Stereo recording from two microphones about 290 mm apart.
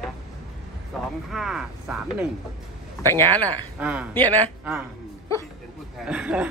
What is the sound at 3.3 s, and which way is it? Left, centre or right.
Speech, centre.